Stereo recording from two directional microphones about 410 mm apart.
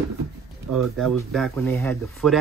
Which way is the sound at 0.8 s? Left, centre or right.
Centre.